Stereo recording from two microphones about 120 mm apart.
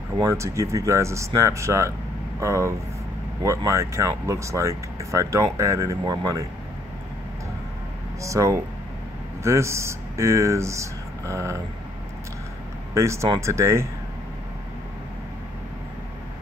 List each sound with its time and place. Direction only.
0.2 s speech: 25° right (ahead or behind)
8.2 s speech: 25° right (ahead or behind)
12.9 s speech: 25° right (ahead or behind)